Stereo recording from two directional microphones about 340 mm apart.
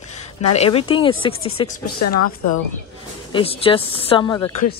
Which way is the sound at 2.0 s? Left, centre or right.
Left.